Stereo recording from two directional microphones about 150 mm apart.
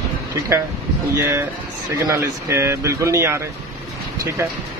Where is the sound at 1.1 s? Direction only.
20° right (ahead or behind).